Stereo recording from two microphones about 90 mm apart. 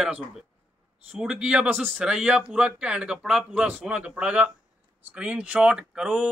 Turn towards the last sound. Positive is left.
turn(degrees=-5)  # may be behind; listen again after turning